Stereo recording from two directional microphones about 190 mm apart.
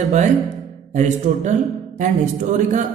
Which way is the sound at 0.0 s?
40° right (ahead or behind).